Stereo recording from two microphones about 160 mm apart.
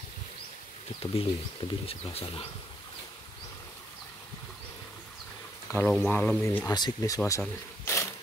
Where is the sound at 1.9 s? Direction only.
35° left (ahead or behind).